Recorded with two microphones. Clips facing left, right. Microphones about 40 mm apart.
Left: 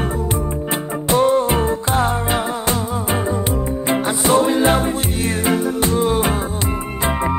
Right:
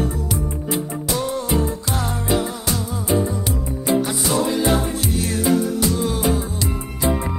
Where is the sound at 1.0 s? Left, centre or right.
Left.